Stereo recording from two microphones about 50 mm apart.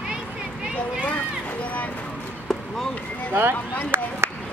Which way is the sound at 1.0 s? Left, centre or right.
Left.